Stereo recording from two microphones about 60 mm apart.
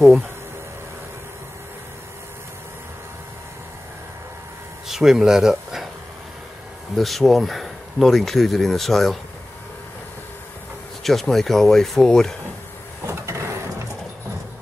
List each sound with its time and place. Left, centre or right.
4.8 s speech: centre
7.0 s speech: centre
11.1 s speech: centre
13.0 s vehicle: right